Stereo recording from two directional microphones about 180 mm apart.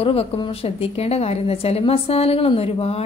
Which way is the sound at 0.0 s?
35° left (ahead or behind).